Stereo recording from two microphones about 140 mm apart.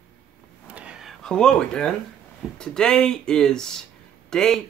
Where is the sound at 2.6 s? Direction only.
5° left (ahead or behind).